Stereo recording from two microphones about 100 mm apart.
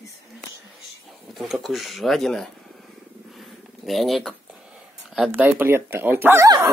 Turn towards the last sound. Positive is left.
turn(degrees=-30)  # may be behind; listen again after turning